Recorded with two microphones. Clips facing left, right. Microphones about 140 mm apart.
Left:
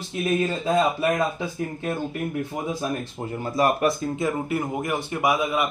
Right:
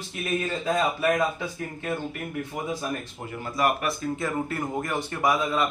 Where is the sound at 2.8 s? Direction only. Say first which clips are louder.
Left 4 dB; 25° left (ahead or behind).